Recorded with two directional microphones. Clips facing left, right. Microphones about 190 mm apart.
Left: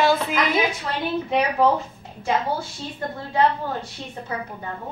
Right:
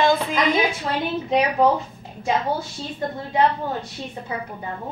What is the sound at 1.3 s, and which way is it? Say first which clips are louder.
Speech: right 2 dB; 15° right (ahead or behind).